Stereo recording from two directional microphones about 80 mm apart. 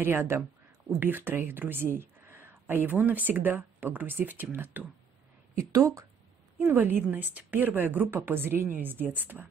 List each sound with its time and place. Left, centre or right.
0.0 s speech: right
5.6 s a woman's voice: right
6.6 s speech: right